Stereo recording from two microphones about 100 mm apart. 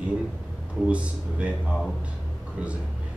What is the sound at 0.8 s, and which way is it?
Speech, 10° right (ahead or behind).